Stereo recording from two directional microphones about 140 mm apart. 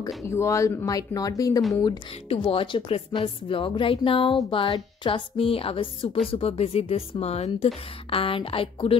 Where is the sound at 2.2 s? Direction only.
40° left (ahead or behind).